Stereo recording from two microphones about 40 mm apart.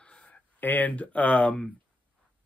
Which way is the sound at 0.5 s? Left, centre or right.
Left.